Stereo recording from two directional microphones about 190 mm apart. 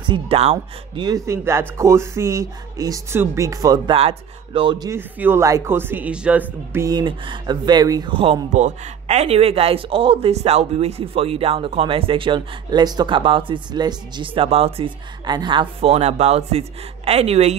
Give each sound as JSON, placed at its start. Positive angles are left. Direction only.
{"t": 0.0, "sound": "speech", "side_deg": -25}